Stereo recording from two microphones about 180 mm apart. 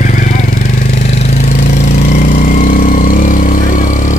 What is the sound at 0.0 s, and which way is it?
Vehicle, 45° left (ahead or behind).